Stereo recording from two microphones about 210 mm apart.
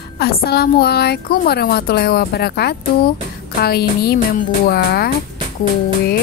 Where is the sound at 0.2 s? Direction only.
45° left (ahead or behind).